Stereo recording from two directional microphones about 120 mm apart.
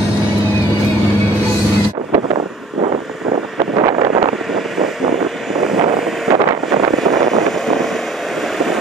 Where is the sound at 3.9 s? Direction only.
50° right (ahead or behind).